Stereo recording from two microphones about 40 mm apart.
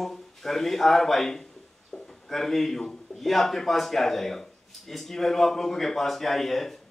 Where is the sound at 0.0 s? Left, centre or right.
Centre.